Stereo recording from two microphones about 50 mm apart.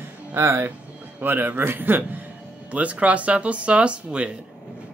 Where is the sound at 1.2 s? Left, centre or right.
Right.